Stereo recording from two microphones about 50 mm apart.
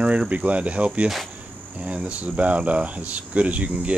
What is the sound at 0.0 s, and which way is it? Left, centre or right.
Speech, right.